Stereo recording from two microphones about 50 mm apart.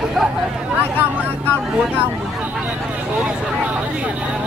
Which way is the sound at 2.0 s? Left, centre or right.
Right.